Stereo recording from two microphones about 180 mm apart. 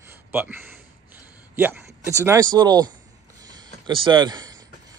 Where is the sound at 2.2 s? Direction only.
15° right (ahead or behind).